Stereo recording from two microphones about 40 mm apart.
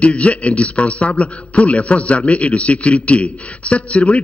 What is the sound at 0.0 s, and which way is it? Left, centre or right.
A man's voice, left.